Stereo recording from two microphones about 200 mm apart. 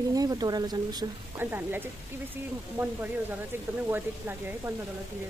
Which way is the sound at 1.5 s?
10° right (ahead or behind).